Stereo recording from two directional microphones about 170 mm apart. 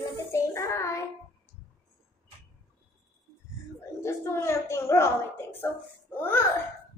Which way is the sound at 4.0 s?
15° left (ahead or behind).